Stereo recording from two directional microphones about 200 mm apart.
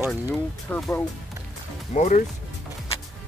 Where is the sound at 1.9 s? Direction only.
40° left (ahead or behind).